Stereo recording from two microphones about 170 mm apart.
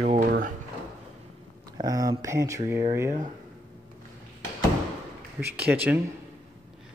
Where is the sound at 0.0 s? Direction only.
50° right (ahead or behind).